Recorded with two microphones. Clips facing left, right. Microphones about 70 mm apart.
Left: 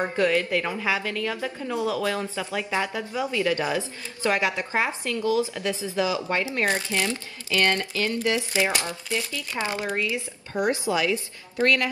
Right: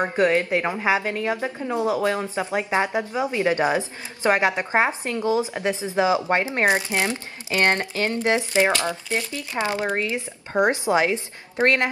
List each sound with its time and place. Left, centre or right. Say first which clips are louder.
0.0 s a woman's voice: right 3 dB; right